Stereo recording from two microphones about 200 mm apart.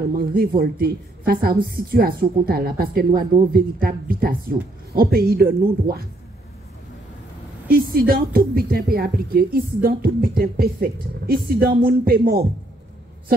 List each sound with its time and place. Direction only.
0.2 s speech: 50° right (ahead or behind)
7.7 s speech: 45° right (ahead or behind)